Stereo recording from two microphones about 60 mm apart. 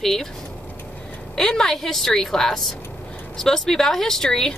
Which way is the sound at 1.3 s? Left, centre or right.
Centre.